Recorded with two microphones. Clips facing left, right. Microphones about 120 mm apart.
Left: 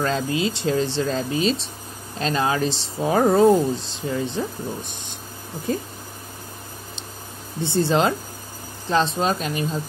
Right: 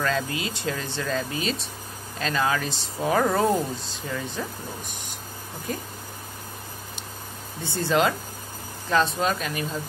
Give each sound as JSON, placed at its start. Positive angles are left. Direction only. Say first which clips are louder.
{"t": 0.0, "sound": "speech", "louder": "left 4 dB", "side_deg": 25}
{"t": 7.6, "sound": "speech", "louder": "left 3 dB", "side_deg": 25}